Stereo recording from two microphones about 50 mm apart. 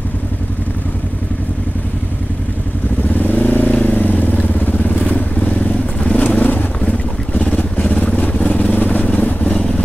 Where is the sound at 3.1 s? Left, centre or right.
Left.